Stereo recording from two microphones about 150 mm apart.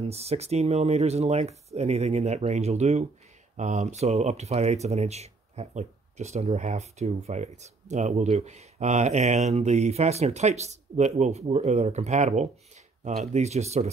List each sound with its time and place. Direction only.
0.0 s speech: 45° right (ahead or behind)